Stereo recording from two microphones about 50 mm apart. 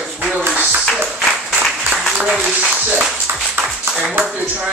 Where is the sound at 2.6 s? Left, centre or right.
Right.